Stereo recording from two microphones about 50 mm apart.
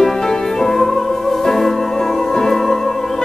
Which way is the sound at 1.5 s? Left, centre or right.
Centre.